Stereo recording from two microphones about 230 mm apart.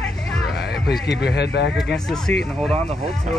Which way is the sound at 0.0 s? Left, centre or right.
Centre.